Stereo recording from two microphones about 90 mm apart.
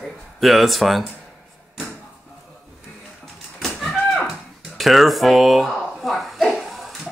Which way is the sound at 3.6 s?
Centre (ahead or behind).